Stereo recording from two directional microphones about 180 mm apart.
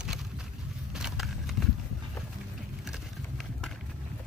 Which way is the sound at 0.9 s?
5° right (ahead or behind).